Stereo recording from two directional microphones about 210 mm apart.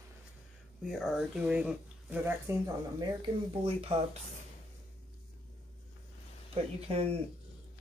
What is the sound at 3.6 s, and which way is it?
Speech, 30° right (ahead or behind).